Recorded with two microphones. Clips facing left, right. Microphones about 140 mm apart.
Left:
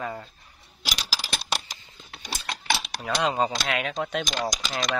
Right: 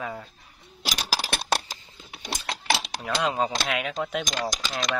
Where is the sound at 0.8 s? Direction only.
55° right (ahead or behind).